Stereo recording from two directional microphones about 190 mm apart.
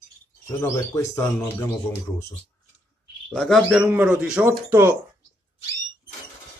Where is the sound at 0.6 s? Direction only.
15° left (ahead or behind).